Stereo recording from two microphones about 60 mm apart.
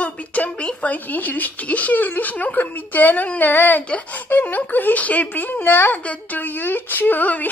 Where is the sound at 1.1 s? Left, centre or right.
Left.